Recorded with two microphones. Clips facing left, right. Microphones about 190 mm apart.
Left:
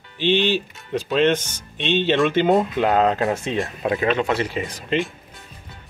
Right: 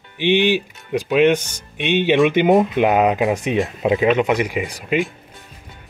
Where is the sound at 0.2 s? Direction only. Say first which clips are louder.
Right 3 dB; 15° right (ahead or behind).